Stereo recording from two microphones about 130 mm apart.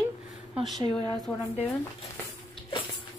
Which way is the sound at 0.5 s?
Centre (ahead or behind).